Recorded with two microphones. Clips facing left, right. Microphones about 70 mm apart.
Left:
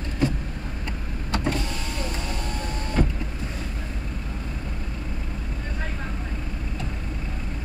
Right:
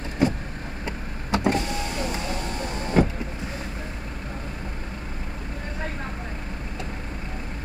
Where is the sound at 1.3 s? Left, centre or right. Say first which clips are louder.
Right 4 dB; centre.